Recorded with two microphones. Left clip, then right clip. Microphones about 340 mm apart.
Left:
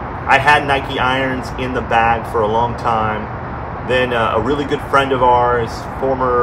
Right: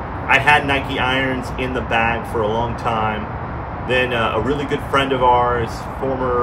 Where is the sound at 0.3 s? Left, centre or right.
Centre.